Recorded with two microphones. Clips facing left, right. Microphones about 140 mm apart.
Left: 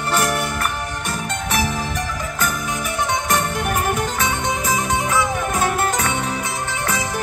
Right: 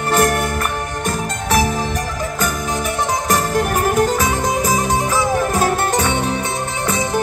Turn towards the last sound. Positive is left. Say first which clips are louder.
# right 3 dB
turn(degrees=-35)  # may be behind; listen again after turning